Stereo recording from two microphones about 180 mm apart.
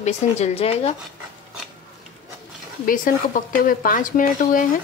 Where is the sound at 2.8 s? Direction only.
50° left (ahead or behind).